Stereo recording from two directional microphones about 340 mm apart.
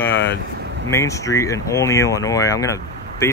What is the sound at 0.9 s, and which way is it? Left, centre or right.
Speech, centre.